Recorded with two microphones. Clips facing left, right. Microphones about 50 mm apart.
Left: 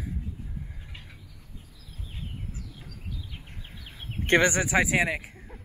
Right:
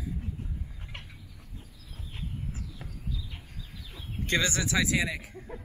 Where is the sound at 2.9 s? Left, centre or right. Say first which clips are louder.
Right 2 dB; left.